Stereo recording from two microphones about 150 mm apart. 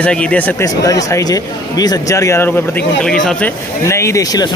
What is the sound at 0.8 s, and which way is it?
Speech, 25° left (ahead or behind).